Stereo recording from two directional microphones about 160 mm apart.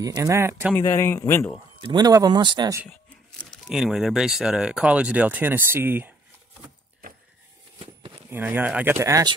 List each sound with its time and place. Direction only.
0.0 s speech: 20° right (ahead or behind)
0.7 s speech: 15° left (ahead or behind)
1.8 s speech: 25° right (ahead or behind)
2.9 s speech: 5° left (ahead or behind); by 6.1 s 10° right (ahead or behind)
8.3 s speech: 10° right (ahead or behind)